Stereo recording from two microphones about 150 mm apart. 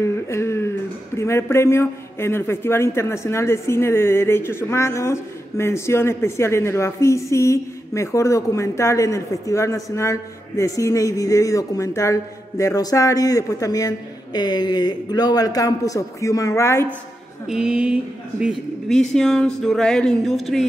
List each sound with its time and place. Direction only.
0.0 s a sound: 20° left (ahead or behind)
1.1 s a man's voice: 15° left (ahead or behind)
17.5 s speech: 5° right (ahead or behind)